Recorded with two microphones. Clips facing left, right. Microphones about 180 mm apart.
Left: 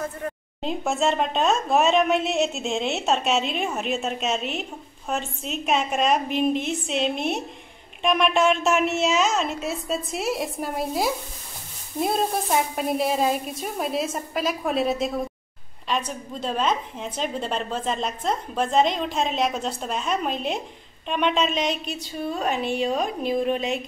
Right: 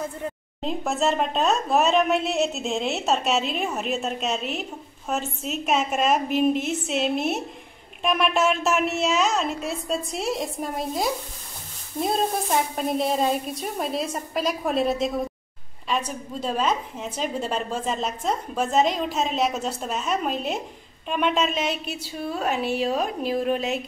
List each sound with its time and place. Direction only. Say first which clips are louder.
0.6 s a woman's voice: even; centre (ahead or behind)